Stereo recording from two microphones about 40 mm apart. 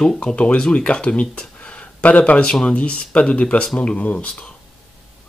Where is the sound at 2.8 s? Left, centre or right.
Left.